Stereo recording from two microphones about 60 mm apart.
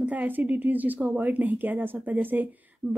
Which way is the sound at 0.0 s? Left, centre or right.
Right.